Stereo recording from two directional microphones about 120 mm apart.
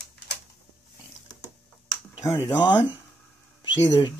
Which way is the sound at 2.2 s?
35° left (ahead or behind).